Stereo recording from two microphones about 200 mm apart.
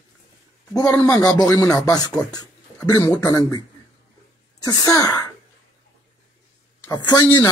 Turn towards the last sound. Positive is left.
turn(degrees=20)  # may be behind; listen again after turning